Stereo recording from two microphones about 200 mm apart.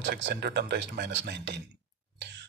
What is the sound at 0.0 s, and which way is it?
Speech, 60° right (ahead or behind).